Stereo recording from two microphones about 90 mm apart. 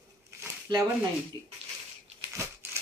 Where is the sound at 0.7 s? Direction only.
50° right (ahead or behind).